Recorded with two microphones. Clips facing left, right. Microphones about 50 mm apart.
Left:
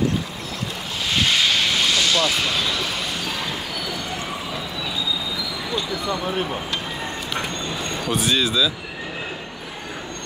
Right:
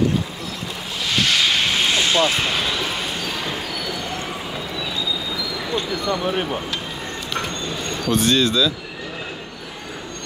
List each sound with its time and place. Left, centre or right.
1.5 s vehicle: centre
1.9 s vehicle: right
8.0 s speech: centre